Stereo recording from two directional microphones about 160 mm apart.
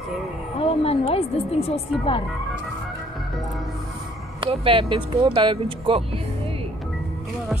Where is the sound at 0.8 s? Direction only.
35° left (ahead or behind).